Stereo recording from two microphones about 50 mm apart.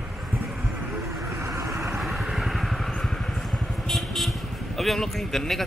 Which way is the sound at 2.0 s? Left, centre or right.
Centre.